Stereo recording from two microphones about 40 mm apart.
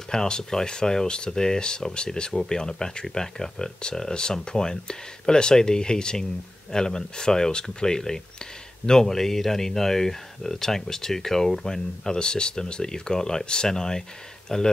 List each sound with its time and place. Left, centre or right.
0.1 s speech: centre